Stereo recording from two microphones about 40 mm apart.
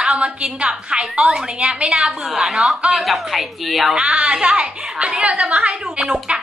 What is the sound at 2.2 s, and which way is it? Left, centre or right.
Speech, centre.